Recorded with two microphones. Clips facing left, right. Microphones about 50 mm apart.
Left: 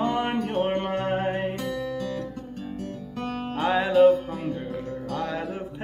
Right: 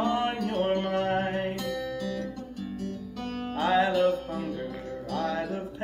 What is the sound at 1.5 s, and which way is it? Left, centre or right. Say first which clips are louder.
Music: left 2 dB; left.